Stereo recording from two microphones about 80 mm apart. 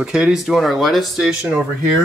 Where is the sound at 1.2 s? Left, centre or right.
Centre.